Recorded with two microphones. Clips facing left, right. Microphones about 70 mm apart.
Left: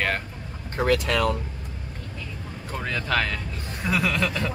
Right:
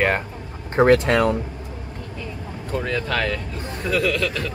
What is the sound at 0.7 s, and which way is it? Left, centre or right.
Speech, right.